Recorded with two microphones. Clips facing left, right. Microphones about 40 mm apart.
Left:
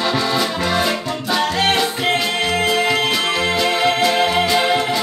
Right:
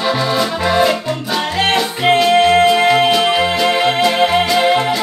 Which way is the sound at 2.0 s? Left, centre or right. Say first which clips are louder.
Right 8 dB; centre.